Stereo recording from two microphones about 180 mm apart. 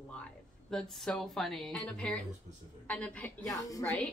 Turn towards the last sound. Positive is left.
turn(degrees=20)  # may be behind; listen again after turning